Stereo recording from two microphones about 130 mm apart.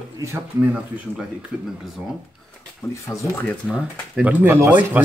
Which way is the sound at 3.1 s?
20° left (ahead or behind).